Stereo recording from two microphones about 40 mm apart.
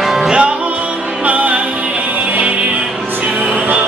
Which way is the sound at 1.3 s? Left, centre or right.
Right.